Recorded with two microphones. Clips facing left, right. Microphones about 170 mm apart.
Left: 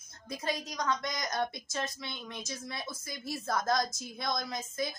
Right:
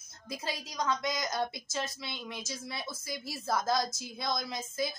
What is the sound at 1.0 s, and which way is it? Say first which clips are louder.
A woman's voice: right 1 dB; 5° right (ahead or behind).